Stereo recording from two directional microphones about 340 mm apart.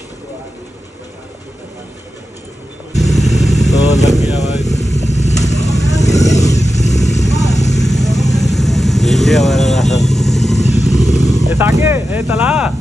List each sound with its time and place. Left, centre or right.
2.9 s motorcycle: centre
6.6 s motorcycle: centre
7.2 s vehicle: centre
10.6 s motorcycle: centre
12.2 s speech: centre